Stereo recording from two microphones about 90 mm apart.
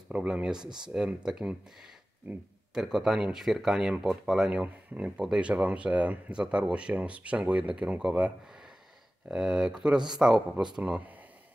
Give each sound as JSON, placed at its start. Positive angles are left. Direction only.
{"t": 0.1, "sound": "speech", "side_deg": -10}
{"t": 0.7, "sound": "speech", "side_deg": -55}
{"t": 0.9, "sound": "speech", "side_deg": -10}